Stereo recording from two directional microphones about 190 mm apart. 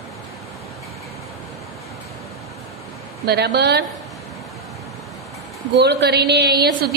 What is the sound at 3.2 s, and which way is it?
Speech, 60° right (ahead or behind).